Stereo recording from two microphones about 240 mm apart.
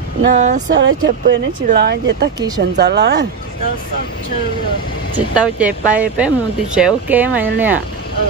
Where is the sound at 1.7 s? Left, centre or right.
Right.